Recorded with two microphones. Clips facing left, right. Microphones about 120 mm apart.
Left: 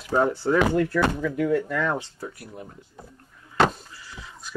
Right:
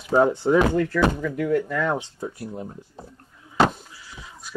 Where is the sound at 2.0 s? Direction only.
25° right (ahead or behind).